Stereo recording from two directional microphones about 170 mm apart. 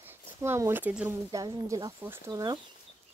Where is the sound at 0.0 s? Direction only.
15° right (ahead or behind).